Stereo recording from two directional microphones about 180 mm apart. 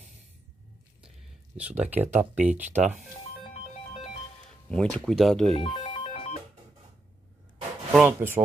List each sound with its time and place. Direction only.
1.6 s speech: 10° right (ahead or behind)
4.6 s speech: 5° left (ahead or behind)
5.5 s speech: 30° left (ahead or behind)
6.0 s music: 35° left (ahead or behind)
7.9 s speech: 10° right (ahead or behind)